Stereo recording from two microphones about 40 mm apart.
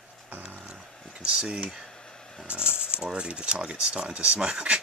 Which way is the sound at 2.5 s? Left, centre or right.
Right.